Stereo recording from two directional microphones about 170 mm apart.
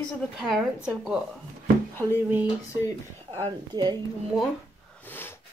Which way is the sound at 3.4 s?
25° right (ahead or behind).